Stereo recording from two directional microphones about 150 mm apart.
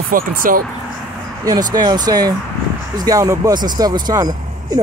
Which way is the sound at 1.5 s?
25° right (ahead or behind).